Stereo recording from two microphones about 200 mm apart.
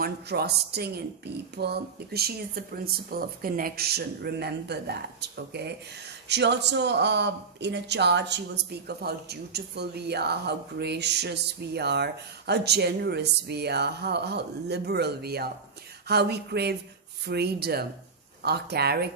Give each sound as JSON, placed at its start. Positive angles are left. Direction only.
{"t": 0.0, "sound": "speech", "side_deg": -55}